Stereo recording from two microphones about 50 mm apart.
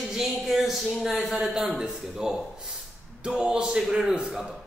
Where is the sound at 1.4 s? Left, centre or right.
Centre.